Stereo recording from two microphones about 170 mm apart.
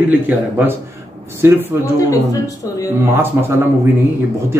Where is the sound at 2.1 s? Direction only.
20° left (ahead or behind).